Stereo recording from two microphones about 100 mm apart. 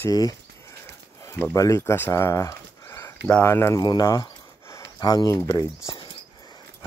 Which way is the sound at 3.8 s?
45° left (ahead or behind).